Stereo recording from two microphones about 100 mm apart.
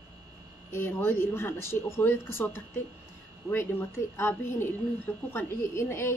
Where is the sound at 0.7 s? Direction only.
25° left (ahead or behind).